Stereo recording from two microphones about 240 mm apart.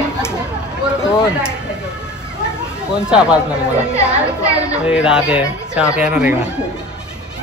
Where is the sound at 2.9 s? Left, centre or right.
Centre.